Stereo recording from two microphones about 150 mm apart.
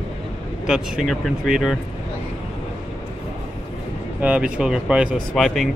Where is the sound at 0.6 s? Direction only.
Centre (ahead or behind).